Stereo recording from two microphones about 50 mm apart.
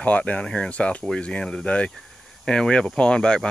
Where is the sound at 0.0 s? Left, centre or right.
Left.